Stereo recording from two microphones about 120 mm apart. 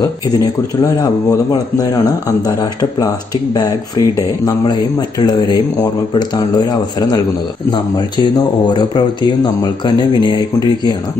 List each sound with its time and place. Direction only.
1.0 s speech: 35° left (ahead or behind)
5.2 s speech: 35° left (ahead or behind)